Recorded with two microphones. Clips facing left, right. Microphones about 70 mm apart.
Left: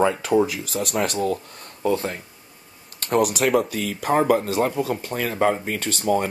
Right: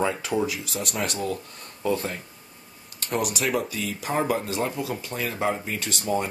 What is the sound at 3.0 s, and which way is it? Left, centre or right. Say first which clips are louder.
Speech: left 6 dB; left.